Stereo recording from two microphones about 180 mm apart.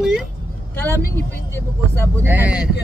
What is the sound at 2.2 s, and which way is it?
Speech, 10° right (ahead or behind).